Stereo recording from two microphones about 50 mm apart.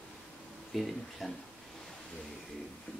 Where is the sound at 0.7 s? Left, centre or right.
Centre.